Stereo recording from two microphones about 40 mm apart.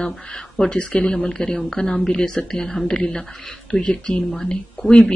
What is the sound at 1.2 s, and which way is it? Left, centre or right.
Speech, centre.